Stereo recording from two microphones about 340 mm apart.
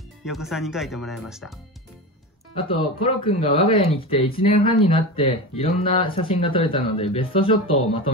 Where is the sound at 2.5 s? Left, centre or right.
Centre.